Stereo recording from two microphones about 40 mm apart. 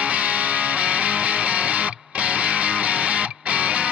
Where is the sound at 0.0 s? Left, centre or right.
Right.